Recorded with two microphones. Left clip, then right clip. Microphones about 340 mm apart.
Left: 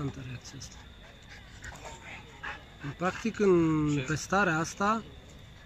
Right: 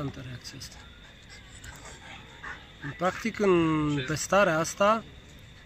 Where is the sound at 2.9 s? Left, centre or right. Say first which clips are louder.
Right 3 dB; centre.